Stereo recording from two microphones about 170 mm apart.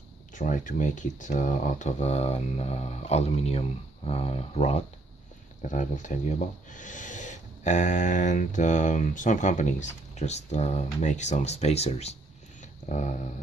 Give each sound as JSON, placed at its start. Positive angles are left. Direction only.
{"t": 0.3, "sound": "speech", "side_deg": 50}